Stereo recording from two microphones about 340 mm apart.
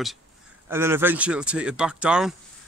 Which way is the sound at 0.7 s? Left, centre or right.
Centre.